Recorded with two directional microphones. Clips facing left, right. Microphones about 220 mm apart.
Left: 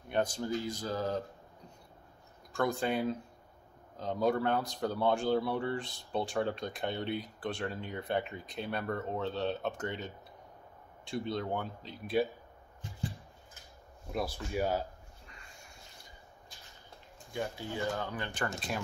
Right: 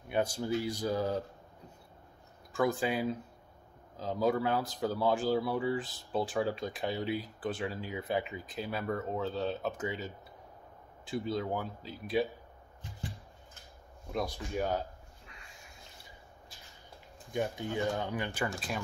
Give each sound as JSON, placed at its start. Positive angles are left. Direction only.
{"t": 0.1, "sound": "speech", "side_deg": -10}
{"t": 2.5, "sound": "speech", "side_deg": -5}
{"t": 14.1, "sound": "a sound", "side_deg": 5}
{"t": 17.3, "sound": "speech", "side_deg": -20}